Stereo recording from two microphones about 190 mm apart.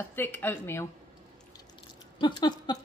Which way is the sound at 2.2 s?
25° left (ahead or behind).